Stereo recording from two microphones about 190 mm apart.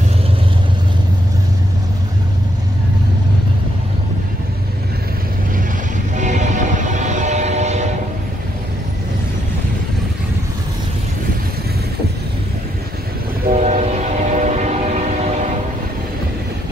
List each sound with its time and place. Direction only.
6.1 s train: 40° right (ahead or behind)
13.5 s train: 35° right (ahead or behind)